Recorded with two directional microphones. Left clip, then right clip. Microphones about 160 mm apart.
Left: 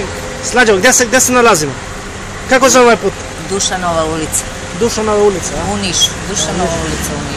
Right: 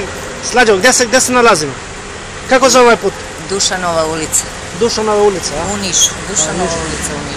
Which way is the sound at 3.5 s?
25° right (ahead or behind).